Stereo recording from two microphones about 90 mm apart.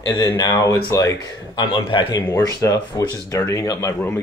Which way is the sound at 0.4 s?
50° left (ahead or behind).